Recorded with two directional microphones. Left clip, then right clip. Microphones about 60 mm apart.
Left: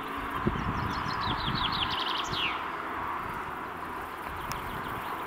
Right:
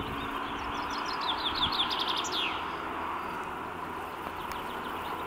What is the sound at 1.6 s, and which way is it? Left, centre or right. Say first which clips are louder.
Bird: right 1 dB; left.